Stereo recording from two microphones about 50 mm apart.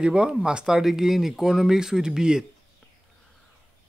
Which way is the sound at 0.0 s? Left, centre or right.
Centre.